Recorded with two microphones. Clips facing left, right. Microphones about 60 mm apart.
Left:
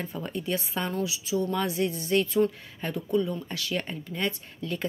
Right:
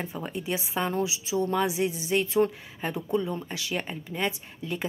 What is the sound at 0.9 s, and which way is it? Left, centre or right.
Speech, right.